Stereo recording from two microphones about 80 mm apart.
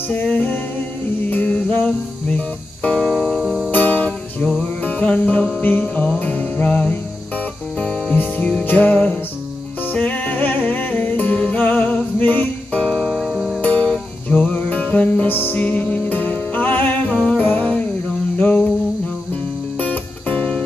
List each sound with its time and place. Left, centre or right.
0.1 s music: left
3.3 s music: centre
3.7 s music: left
12.8 s music: centre
13.6 s music: centre
18.4 s a sound: centre
19.8 s music: centre